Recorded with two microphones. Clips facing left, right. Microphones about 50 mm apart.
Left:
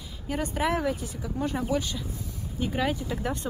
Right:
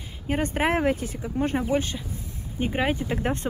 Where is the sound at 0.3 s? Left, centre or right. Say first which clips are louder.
Right 3 dB; right.